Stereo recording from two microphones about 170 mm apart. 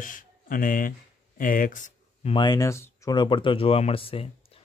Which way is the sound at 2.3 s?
25° left (ahead or behind).